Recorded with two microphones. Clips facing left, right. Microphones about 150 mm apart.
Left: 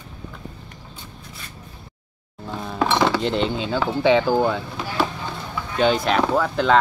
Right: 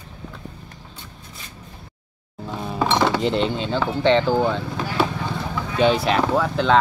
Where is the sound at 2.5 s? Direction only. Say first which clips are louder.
Even; 5° right (ahead or behind).